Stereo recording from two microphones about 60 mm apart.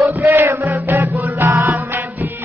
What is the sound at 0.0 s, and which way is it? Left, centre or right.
Music, right.